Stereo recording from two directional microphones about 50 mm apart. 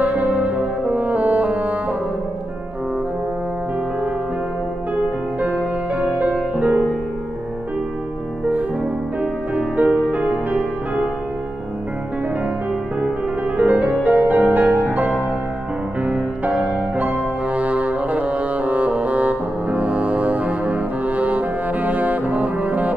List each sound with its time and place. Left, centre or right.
0.0 s brass instrument: right
4.9 s music: right
9.2 s music: right
13.6 s music: right